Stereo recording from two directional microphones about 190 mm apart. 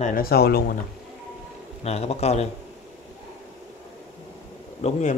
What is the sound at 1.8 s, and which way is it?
Speech, 35° left (ahead or behind).